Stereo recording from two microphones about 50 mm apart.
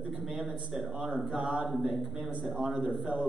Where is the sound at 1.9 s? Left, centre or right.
Centre.